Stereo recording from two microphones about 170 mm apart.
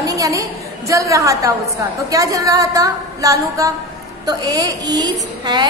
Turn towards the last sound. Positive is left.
turn(degrees=-25)  # may be behind; listen again after turning